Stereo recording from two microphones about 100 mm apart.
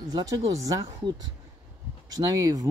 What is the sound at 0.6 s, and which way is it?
Speech, 35° right (ahead or behind).